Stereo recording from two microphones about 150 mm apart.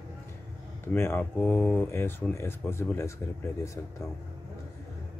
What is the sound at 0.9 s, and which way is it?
Speech, 15° left (ahead or behind).